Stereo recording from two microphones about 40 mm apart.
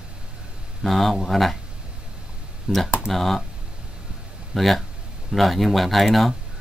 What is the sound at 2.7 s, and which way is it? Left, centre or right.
Computer keyboard, centre.